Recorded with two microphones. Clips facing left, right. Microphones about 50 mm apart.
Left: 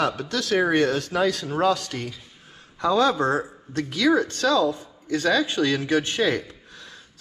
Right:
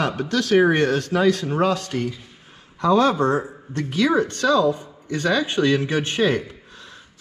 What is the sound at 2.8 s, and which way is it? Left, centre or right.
Speech, right.